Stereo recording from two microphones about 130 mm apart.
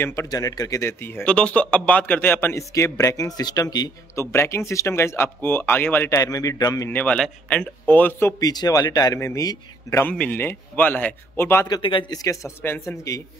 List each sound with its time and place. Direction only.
0.0 s a man's voice: 20° left (ahead or behind)
1.2 s a man's voice: 10° left (ahead or behind); by 6.9 s 25° left (ahead or behind)
6.9 s speech: 10° left (ahead or behind)
8.5 s a man's voice: 30° left (ahead or behind)
11.6 s a man's voice: 35° left (ahead or behind)